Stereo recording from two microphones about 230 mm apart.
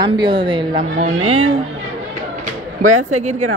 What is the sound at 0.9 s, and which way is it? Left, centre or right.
Speech, right.